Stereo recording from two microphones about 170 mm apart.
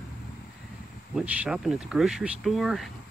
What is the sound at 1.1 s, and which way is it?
Speech, 5° right (ahead or behind).